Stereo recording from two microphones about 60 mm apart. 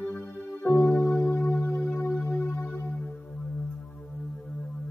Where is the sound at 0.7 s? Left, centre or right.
Left.